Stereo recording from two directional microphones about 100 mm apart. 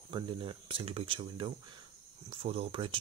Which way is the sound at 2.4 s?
75° right (ahead or behind).